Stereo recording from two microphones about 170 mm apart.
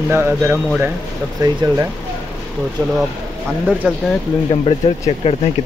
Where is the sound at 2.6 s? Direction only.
5° right (ahead or behind).